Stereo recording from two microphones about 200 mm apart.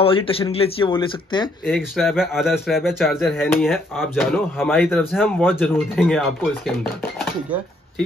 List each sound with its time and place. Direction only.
0.0 s speech: 25° left (ahead or behind)
1.7 s speech: centre (ahead or behind)